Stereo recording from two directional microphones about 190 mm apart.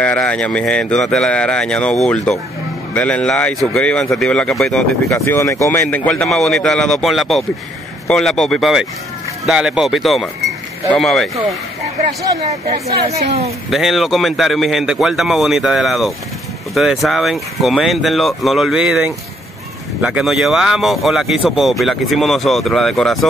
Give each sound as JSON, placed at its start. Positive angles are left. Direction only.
{"t": 0.0, "sound": "speech", "side_deg": 5}
{"t": 5.1, "sound": "speech", "side_deg": 15}
{"t": 12.6, "sound": "speech", "side_deg": -35}
{"t": 13.7, "sound": "speech", "side_deg": 0}